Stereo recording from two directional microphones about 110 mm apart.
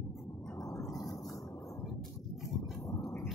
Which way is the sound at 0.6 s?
30° left (ahead or behind).